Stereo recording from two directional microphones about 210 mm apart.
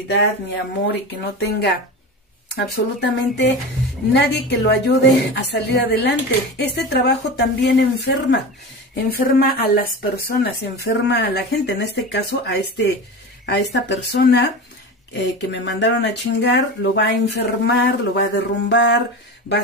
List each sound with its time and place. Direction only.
1.4 s speech: 50° left (ahead or behind)